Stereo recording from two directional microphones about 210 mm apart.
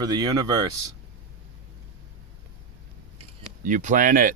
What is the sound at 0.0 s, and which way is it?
Speech, 20° right (ahead or behind).